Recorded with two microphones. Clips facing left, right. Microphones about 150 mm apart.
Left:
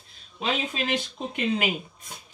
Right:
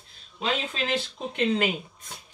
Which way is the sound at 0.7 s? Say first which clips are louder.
Even; 10° left (ahead or behind).